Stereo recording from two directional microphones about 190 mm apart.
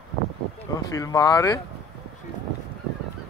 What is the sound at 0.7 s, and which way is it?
Speech, 20° left (ahead or behind).